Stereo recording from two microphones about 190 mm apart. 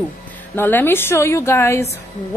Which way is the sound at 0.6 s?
10° left (ahead or behind).